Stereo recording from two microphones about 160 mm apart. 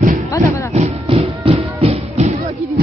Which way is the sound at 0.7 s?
45° right (ahead or behind).